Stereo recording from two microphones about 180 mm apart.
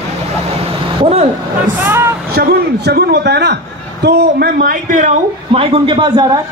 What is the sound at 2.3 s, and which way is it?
A man's voice, 60° right (ahead or behind).